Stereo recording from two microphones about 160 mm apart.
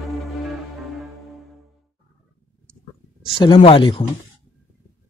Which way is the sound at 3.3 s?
35° left (ahead or behind).